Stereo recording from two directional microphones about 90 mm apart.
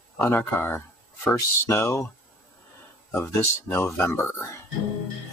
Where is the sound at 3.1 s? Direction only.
25° left (ahead or behind).